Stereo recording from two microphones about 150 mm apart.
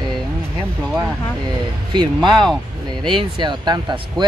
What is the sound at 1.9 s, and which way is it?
Speech, 30° right (ahead or behind).